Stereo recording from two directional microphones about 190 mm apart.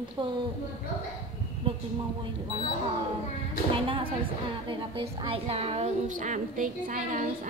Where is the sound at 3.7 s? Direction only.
25° right (ahead or behind).